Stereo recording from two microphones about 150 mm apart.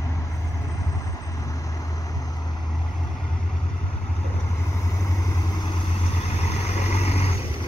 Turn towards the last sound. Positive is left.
turn(degrees=45)  # may be behind; listen again after turning